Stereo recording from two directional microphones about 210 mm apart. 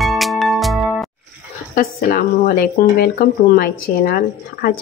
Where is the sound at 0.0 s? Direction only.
Centre (ahead or behind).